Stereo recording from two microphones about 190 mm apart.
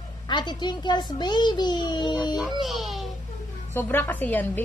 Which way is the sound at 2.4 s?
Centre (ahead or behind).